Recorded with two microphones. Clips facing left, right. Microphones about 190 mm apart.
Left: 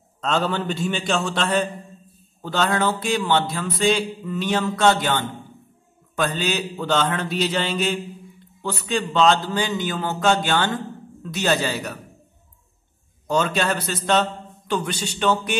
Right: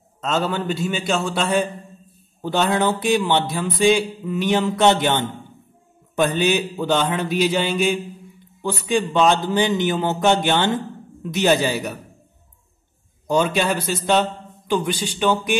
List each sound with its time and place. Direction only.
0.2 s a man's voice: 5° right (ahead or behind)
13.3 s speech: 15° right (ahead or behind)